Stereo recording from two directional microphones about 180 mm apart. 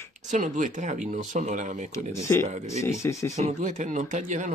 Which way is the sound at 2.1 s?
15° left (ahead or behind).